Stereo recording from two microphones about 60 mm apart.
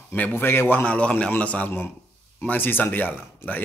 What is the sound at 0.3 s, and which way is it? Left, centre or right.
Speech, left.